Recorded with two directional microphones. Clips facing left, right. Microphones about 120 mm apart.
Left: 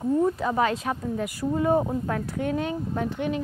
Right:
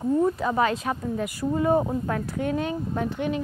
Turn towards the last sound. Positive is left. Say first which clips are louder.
# right 1 dB
turn(degrees=-20)  # may be behind; listen again after turning